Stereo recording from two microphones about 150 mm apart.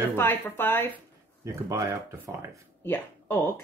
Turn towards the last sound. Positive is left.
turn(degrees=10)  # may be behind; listen again after turning